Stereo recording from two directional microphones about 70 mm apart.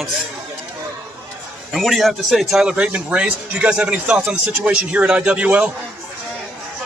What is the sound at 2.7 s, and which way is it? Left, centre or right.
Speech, centre.